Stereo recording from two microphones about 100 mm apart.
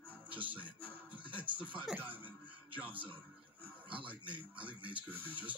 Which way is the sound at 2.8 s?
60° right (ahead or behind).